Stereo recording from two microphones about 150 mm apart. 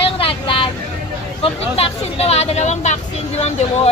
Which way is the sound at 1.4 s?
40° left (ahead or behind).